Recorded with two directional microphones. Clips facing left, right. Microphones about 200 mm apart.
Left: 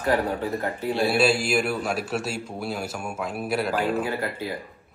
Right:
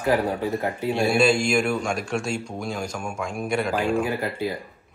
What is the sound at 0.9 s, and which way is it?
A man's voice, centre (ahead or behind).